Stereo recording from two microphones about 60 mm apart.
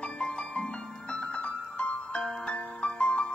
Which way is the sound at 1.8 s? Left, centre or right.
Left.